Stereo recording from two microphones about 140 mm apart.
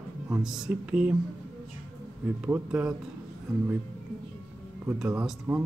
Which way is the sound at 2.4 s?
10° right (ahead or behind).